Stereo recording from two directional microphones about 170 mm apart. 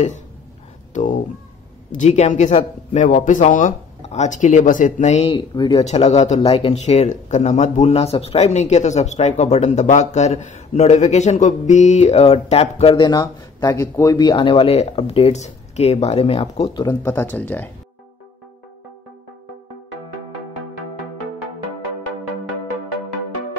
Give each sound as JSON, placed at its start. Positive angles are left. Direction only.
{"t": 0.9, "sound": "a man's voice", "side_deg": 45}
{"t": 16.7, "sound": "speech", "side_deg": 15}